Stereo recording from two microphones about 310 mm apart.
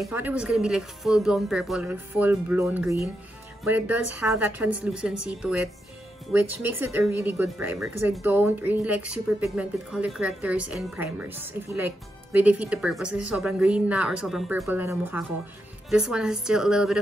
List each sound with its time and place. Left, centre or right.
0.0 s a woman's voice: centre
6.8 s a woman's voice: centre